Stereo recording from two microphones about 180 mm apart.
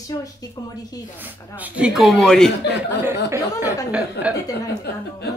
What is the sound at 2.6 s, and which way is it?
Speech, 65° left (ahead or behind).